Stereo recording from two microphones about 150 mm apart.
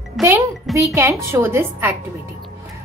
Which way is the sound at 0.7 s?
20° right (ahead or behind).